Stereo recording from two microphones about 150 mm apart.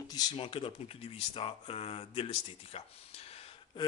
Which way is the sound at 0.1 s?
30° left (ahead or behind).